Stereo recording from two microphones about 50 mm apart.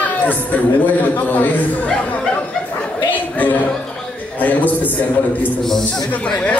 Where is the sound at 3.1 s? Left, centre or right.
Left.